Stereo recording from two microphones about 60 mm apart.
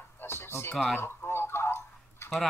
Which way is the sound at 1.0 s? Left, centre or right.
Left.